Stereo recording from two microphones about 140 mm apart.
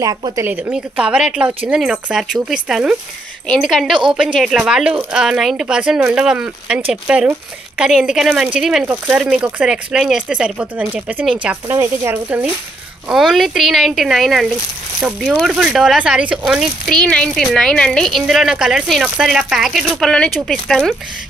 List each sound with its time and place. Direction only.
0.0 s speech: 25° right (ahead or behind)
0.5 s speech: 10° right (ahead or behind)
13.1 s speech: centre (ahead or behind)